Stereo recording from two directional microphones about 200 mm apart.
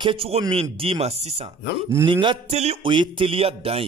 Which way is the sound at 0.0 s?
25° right (ahead or behind).